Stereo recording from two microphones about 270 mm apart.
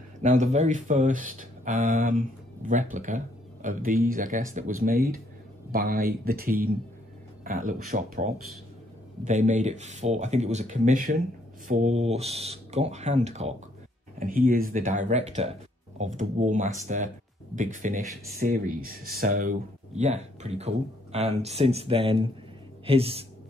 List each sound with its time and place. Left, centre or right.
0.2 s speech: right